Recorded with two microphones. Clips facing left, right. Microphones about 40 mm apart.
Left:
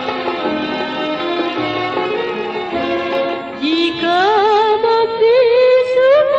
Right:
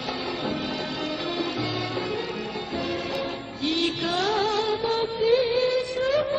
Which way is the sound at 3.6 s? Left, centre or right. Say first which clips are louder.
Left 9 dB; left.